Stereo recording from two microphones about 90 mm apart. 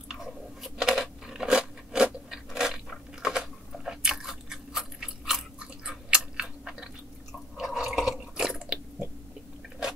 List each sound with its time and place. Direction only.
0.1 s crunch: 5° right (ahead or behind)
7.5 s drip: 5° right (ahead or behind)
8.5 s biting: 15° right (ahead or behind)